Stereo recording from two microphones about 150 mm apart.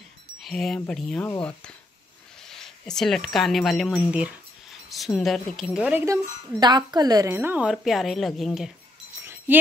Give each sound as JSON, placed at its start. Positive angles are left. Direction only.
{"t": 0.4, "sound": "a woman's voice", "side_deg": 0}
{"t": 6.6, "sound": "a woman's voice", "side_deg": -30}
{"t": 7.7, "sound": "a woman's voice", "side_deg": 0}
{"t": 9.2, "sound": "a sound", "side_deg": -15}